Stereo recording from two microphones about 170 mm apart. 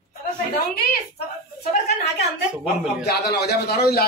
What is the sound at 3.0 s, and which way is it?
A man's voice, 70° left (ahead or behind).